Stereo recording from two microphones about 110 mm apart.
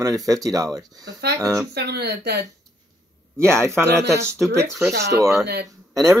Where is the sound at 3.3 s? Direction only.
25° right (ahead or behind).